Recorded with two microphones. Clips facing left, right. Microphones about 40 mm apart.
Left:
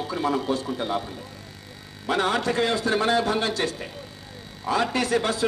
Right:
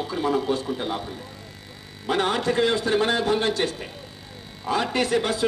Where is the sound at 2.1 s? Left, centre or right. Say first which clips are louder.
Right 1 dB; right.